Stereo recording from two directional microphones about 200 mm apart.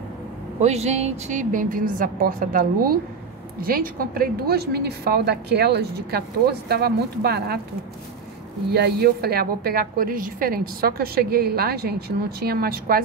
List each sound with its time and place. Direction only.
0.6 s a woman's voice: 30° right (ahead or behind); by 7.6 s 55° right (ahead or behind)
8.7 s a woman's voice: 55° right (ahead or behind)